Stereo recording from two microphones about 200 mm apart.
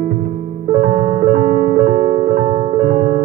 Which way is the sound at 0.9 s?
35° right (ahead or behind).